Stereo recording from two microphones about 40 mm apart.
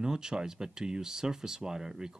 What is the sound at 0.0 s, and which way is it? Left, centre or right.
Speech, centre.